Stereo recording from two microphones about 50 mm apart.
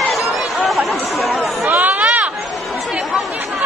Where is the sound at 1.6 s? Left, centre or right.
Right.